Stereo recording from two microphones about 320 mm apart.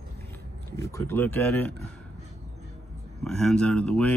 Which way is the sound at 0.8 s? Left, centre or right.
Centre.